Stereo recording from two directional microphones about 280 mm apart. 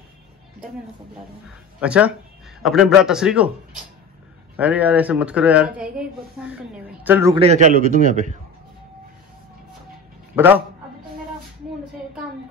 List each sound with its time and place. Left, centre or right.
1.8 s speech: centre
4.6 s speech: centre
7.3 s a man's voice: right
10.3 s a man's voice: centre